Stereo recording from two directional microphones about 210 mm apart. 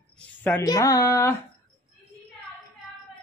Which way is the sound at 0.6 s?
15° left (ahead or behind).